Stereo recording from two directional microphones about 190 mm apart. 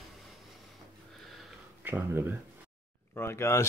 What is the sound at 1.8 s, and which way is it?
Speech, 10° right (ahead or behind).